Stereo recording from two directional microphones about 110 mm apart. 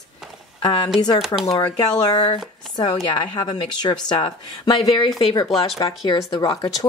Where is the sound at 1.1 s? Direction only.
5° right (ahead or behind).